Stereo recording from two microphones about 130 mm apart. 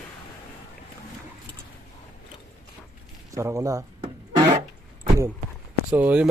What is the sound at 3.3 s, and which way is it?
Speech, 25° right (ahead or behind).